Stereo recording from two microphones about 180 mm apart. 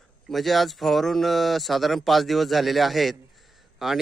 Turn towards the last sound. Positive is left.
turn(degrees=0)  # may be behind; listen again after turning